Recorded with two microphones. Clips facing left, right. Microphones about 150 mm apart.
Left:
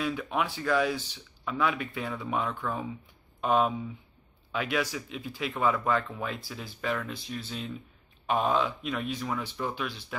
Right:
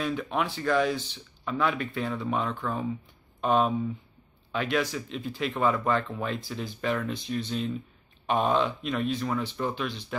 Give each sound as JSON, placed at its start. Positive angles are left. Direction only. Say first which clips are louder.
{"t": 0.0, "sound": "speech", "louder": "right 1 dB", "side_deg": 5}